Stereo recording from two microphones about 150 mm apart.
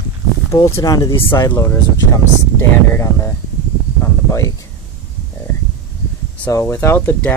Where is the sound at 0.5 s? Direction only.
20° left (ahead or behind).